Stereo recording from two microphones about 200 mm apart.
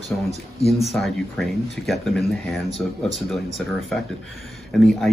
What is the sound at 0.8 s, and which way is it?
Speech, centre (ahead or behind).